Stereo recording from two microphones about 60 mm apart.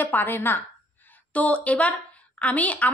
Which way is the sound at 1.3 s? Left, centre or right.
Left.